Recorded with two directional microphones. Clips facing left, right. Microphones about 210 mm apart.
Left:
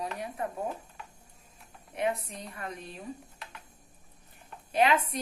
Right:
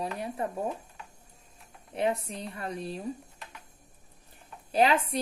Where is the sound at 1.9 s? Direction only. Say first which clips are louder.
Right 2 dB; 30° right (ahead or behind).